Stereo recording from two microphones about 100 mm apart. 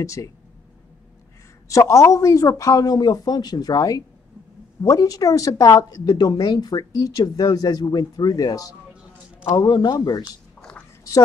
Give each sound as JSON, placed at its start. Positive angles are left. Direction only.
{"t": 0.0, "sound": "speech", "side_deg": 30}
{"t": 1.7, "sound": "speech", "side_deg": 30}
{"t": 9.6, "sound": "speech", "side_deg": 50}
{"t": 10.6, "sound": "a sound", "side_deg": 10}